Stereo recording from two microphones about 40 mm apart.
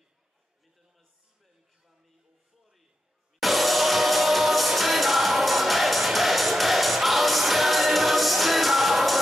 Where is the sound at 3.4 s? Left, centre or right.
Centre.